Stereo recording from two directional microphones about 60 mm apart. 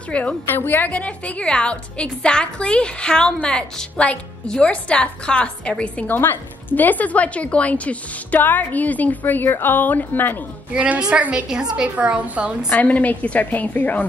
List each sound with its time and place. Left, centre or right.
0.1 s speech: left
0.5 s a woman's voice: left
0.9 s a woman's voice: left
6.1 s speech: left
10.7 s a woman's voice: centre
12.6 s speech: left